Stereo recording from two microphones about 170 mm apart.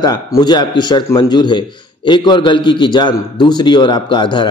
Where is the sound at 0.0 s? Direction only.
25° left (ahead or behind).